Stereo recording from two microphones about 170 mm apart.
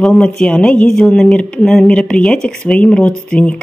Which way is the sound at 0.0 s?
5° left (ahead or behind).